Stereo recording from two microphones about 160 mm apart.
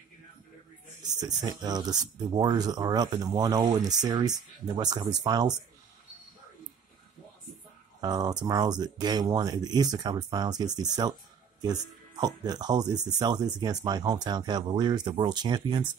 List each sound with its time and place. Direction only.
1.0 s speech: 25° right (ahead or behind)
8.0 s speech: 25° right (ahead or behind)